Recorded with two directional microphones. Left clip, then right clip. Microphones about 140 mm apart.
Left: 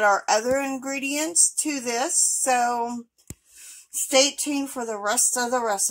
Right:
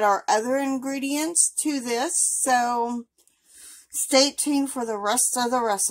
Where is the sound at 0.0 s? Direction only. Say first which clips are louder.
Left 1 dB; 10° right (ahead or behind).